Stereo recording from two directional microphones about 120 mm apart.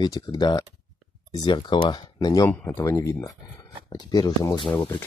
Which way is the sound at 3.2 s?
35° left (ahead or behind).